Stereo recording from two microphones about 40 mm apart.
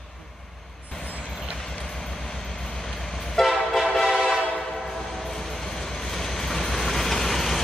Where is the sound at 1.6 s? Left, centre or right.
Centre.